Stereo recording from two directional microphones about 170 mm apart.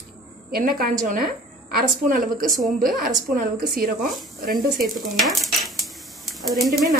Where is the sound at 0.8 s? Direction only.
55° right (ahead or behind).